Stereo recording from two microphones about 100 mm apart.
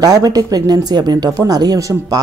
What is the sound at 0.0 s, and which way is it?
Speech, 40° right (ahead or behind).